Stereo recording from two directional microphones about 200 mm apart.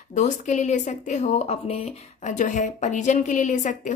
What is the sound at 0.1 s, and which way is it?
Speech, 35° left (ahead or behind).